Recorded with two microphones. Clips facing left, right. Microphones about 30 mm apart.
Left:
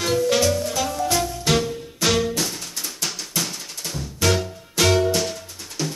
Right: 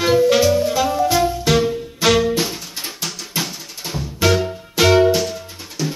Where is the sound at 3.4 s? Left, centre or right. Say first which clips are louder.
Right 2 dB; centre.